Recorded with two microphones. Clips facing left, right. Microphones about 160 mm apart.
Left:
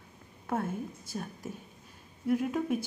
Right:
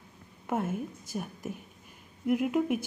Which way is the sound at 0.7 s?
15° right (ahead or behind).